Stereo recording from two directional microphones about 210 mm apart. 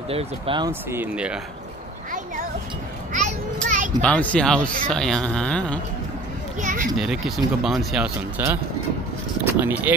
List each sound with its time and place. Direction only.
0.1 s speech: 25° right (ahead or behind)
0.7 s speech: 10° right (ahead or behind)
3.1 s children playing: 35° right (ahead or behind)
3.6 s a sound: 40° right (ahead or behind)
4.0 s speech: 5° left (ahead or behind)
6.6 s a child's voice: 40° right (ahead or behind)
7.0 s speech: centre (ahead or behind)
9.6 s speech: 10° right (ahead or behind)